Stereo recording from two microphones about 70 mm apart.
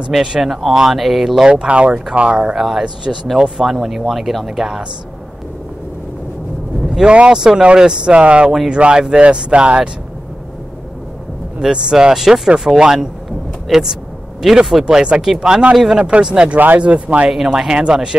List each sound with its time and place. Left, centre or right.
0.1 s speech: centre
2.5 s speech: centre
7.0 s speech: centre
11.6 s speech: centre
17.3 s speech: centre